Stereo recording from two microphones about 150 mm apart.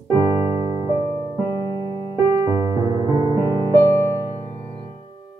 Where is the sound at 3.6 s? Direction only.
25° left (ahead or behind).